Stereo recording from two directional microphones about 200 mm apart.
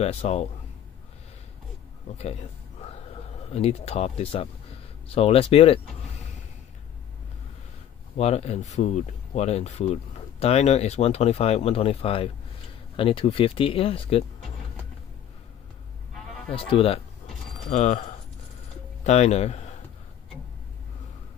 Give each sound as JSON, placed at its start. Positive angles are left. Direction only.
{"t": 0.0, "sound": "speech", "side_deg": 30}
{"t": 3.5, "sound": "speech", "side_deg": 30}
{"t": 8.2, "sound": "speech", "side_deg": 30}
{"t": 16.5, "sound": "speech", "side_deg": 30}